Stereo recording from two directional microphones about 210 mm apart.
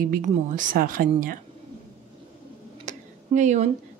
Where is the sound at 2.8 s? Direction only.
35° right (ahead or behind).